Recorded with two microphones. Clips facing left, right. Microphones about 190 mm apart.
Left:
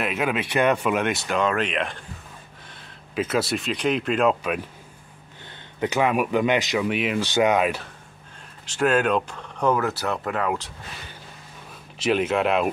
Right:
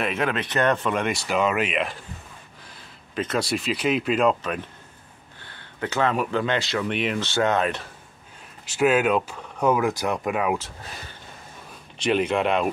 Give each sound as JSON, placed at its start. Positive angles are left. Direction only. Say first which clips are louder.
{"t": 0.0, "sound": "speech", "louder": "even", "side_deg": 5}
{"t": 5.4, "sound": "speech", "louder": "left 4 dB", "side_deg": 20}
{"t": 6.9, "sound": "speech", "louder": "left 2 dB", "side_deg": 5}
{"t": 7.2, "sound": "speech", "louder": "left 3 dB", "side_deg": 15}
{"t": 8.6, "sound": "speech", "louder": "right 1 dB", "side_deg": -10}
{"t": 12.0, "sound": "speech", "louder": "even", "side_deg": 0}